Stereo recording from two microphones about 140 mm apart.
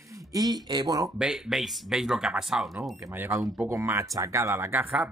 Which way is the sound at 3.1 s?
15° right (ahead or behind).